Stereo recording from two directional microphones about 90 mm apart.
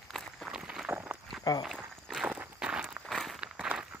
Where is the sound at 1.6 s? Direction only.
Centre (ahead or behind).